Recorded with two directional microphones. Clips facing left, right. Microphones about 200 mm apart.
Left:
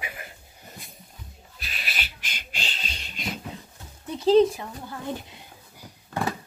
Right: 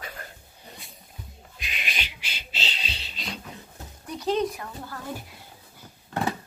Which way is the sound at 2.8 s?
45° left (ahead or behind).